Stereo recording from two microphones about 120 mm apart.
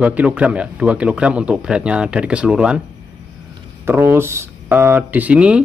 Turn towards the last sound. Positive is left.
turn(degrees=-10)  # may be behind; listen again after turning